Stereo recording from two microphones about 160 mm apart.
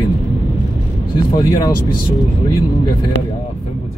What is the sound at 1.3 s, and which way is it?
Speech, 25° left (ahead or behind).